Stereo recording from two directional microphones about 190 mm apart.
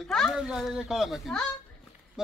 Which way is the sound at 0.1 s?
Centre (ahead or behind).